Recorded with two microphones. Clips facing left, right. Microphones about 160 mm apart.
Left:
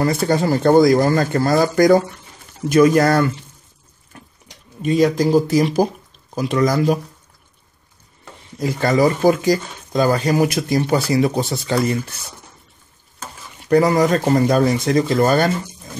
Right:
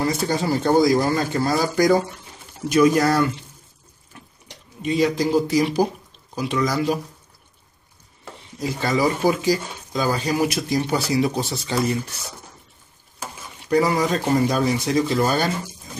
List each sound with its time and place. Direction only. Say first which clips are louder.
0.0 s speech: left 5 dB; 55° left (ahead or behind)
4.8 s speech: left 4 dB; 45° left (ahead or behind)
8.5 s speech: left 5 dB; 55° left (ahead or behind)
13.7 s speech: left 5 dB; 50° left (ahead or behind)